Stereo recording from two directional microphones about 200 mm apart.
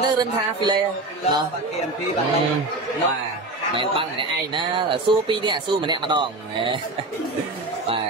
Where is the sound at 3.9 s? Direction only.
25° right (ahead or behind).